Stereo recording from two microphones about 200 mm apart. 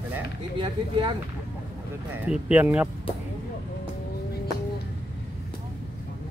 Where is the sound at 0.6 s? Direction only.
25° right (ahead or behind).